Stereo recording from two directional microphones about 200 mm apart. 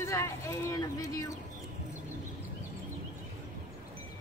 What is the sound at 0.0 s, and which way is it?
Speech, 15° left (ahead or behind).